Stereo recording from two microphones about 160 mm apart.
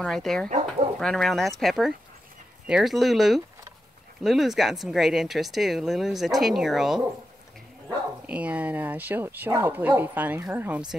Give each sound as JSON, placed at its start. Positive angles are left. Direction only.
{"t": 0.0, "sound": "speech", "side_deg": 0}
{"t": 0.5, "sound": "speech", "side_deg": -45}
{"t": 0.9, "sound": "speech", "side_deg": 0}
{"t": 8.3, "sound": "speech", "side_deg": -10}